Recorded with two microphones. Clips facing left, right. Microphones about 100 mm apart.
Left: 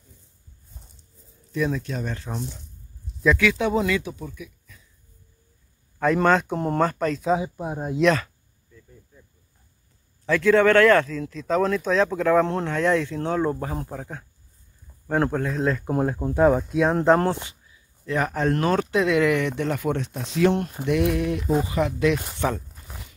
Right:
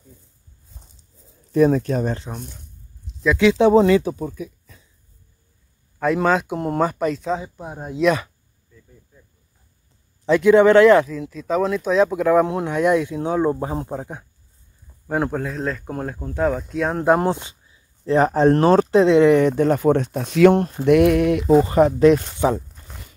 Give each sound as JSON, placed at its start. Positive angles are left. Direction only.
{"t": 0.8, "sound": "a sound", "side_deg": -25}
{"t": 1.5, "sound": "speech", "side_deg": -45}
{"t": 3.3, "sound": "speech", "side_deg": -25}
{"t": 5.9, "sound": "speech", "side_deg": -5}
{"t": 7.2, "sound": "speech", "side_deg": 10}
{"t": 10.2, "sound": "speech", "side_deg": -20}
{"t": 15.0, "sound": "speech", "side_deg": -5}
{"t": 18.0, "sound": "speech", "side_deg": -30}
{"t": 20.8, "sound": "speech", "side_deg": -60}
{"t": 21.6, "sound": "speech", "side_deg": -40}
{"t": 22.4, "sound": "speech", "side_deg": -20}